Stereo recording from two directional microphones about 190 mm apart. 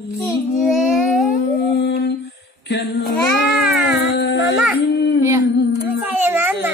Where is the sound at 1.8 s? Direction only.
50° left (ahead or behind).